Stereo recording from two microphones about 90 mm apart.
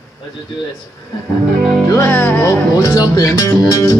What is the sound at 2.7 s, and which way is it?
Speech, 40° left (ahead or behind).